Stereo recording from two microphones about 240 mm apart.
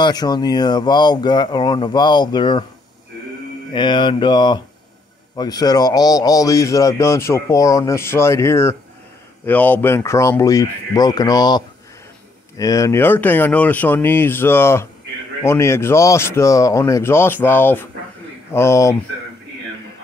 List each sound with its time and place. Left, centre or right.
0.0 s a man's voice: centre
3.7 s mantra: centre
5.3 s a man's voice: centre